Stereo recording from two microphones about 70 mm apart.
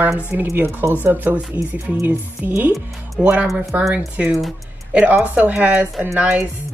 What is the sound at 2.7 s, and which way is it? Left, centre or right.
Speech, centre.